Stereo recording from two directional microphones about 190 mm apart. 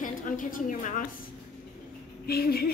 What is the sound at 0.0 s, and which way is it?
A woman's voice, 45° left (ahead or behind).